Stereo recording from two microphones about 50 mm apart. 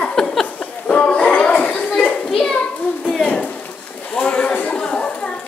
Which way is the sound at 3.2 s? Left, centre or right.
Left.